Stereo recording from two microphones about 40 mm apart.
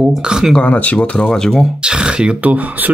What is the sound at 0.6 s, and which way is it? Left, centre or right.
Speech, left.